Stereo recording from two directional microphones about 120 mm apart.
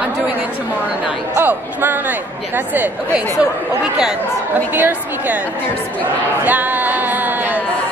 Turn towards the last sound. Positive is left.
turn(degrees=-15)  # may be behind; listen again after turning